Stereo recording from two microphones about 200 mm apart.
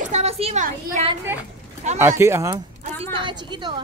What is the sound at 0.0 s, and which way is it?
A woman's voice, 35° right (ahead or behind).